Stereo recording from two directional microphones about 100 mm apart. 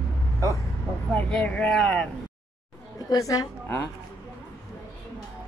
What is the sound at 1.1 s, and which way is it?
Speech, 10° left (ahead or behind).